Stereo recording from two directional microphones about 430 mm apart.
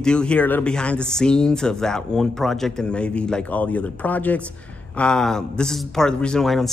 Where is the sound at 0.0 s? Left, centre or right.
Centre.